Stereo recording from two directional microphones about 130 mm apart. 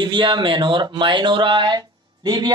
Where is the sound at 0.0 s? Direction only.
40° right (ahead or behind).